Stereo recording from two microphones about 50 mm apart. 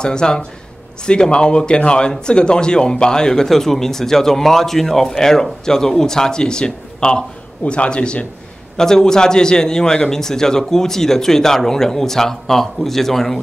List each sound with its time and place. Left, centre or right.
0.0 s speech: centre